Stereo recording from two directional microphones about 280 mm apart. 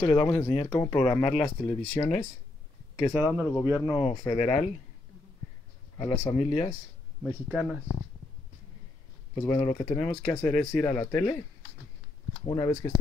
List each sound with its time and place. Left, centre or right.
0.0 s speech: centre
3.0 s speech: centre
3.9 s speech: centre
5.9 s speech: centre
6.3 s speech: left
7.5 s speech: centre
9.3 s speech: centre
12.4 s speech: centre